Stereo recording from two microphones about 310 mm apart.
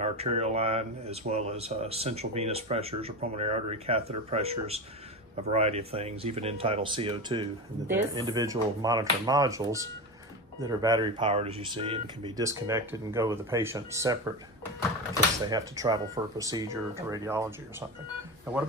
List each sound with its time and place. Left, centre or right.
0.0 s speech: centre
15.4 s speech: centre